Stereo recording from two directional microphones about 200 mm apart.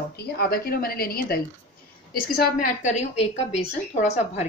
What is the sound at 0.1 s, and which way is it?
A woman's voice, 55° left (ahead or behind).